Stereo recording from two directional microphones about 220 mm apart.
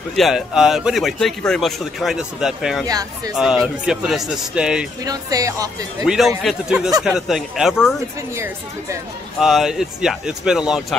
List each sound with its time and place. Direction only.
0.1 s speech: centre (ahead or behind)
2.9 s speech: 15° right (ahead or behind)
3.6 s speech: 5° right (ahead or behind)
5.0 s speech: 15° right (ahead or behind)
6.0 s speech: centre (ahead or behind)
8.4 s speech: 15° right (ahead or behind)
9.4 s speech: centre (ahead or behind)